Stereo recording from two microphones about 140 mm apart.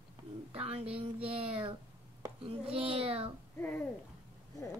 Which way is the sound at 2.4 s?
40° right (ahead or behind).